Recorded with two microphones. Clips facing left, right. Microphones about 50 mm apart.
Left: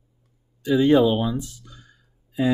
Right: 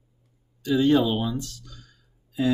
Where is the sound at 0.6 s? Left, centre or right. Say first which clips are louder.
Left 3 dB; centre.